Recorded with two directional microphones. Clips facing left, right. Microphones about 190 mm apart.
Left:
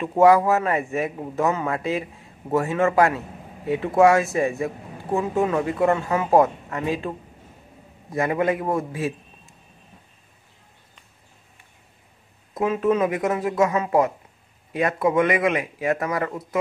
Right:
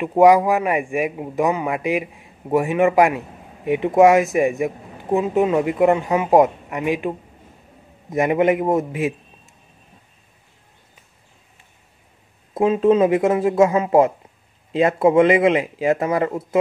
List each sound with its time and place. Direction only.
0.0 s a man's voice: 15° right (ahead or behind)
12.5 s speech: 25° right (ahead or behind)